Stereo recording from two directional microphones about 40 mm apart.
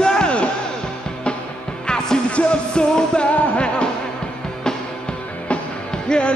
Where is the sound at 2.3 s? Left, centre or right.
Left.